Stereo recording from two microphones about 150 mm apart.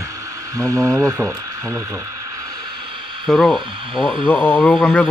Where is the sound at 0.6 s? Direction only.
20° right (ahead or behind).